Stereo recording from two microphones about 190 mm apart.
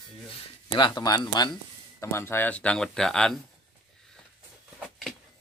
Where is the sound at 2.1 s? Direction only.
10° left (ahead or behind).